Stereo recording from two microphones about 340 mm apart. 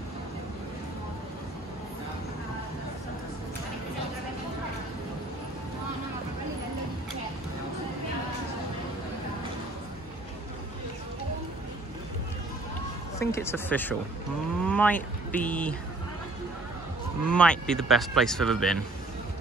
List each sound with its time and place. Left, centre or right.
13.2 s speech: centre
17.3 s speech: centre